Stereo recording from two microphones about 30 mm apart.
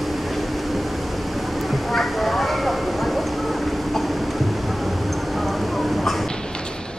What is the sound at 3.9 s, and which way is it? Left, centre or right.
Train, centre.